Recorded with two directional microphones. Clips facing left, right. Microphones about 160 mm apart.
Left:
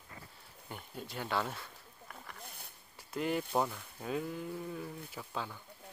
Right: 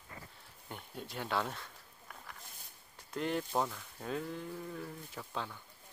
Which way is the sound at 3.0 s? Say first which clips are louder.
Left 1 dB; 5° left (ahead or behind).